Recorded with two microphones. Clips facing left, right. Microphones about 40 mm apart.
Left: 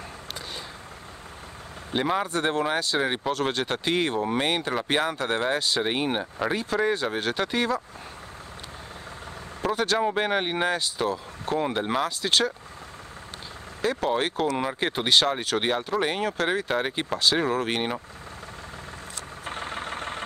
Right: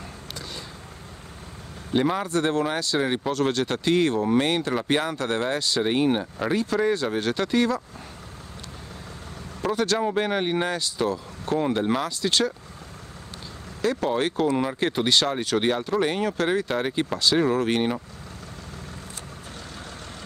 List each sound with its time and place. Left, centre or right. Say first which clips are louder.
2.0 s speech: right 2 dB; centre
9.6 s speech: right 1 dB; centre
13.7 s speech: right 1 dB; centre
19.4 s vehicle: left 7 dB; left